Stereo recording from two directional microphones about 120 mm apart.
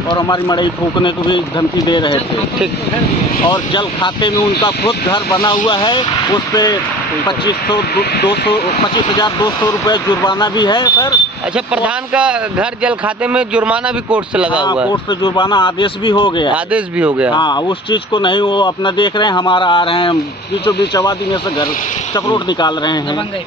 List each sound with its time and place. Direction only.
0.1 s speech: 40° left (ahead or behind)
3.4 s speech: 40° left (ahead or behind)
8.8 s speech: 35° left (ahead or behind)
11.5 s speech: 10° right (ahead or behind)
15.2 s speech: 40° left (ahead or behind)
16.7 s speech: 10° right (ahead or behind)
17.3 s speech: 40° left (ahead or behind)
20.6 s speech: 35° left (ahead or behind)